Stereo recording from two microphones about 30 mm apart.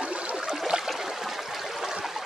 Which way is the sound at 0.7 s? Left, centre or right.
Right.